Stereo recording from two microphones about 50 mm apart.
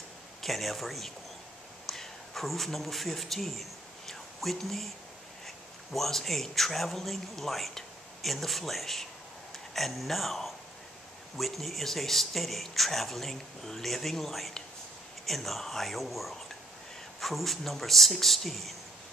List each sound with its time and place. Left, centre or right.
0.4 s a man's voice: centre
4.1 s whispering: centre
5.9 s speech: centre